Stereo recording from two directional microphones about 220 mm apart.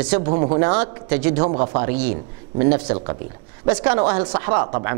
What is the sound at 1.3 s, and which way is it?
Speech, 30° right (ahead or behind).